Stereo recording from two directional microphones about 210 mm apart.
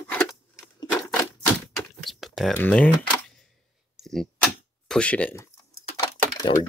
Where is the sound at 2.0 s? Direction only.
Centre (ahead or behind).